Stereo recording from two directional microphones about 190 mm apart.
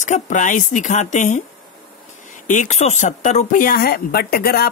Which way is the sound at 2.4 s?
40° left (ahead or behind).